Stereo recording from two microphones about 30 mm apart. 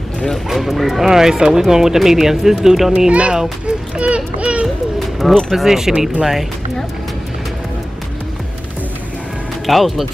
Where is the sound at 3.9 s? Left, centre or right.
Right.